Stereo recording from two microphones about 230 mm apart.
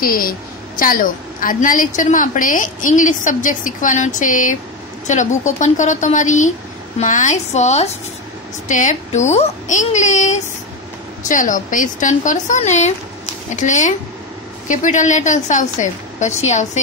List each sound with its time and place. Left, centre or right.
0.0 s a woman's voice: left